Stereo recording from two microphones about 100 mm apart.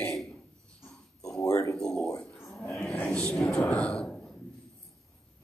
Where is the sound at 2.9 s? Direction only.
10° left (ahead or behind).